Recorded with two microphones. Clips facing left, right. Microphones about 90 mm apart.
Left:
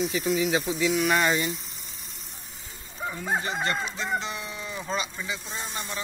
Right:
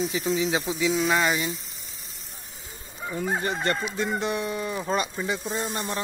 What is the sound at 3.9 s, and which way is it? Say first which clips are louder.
Speech: right 4 dB; 50° right (ahead or behind).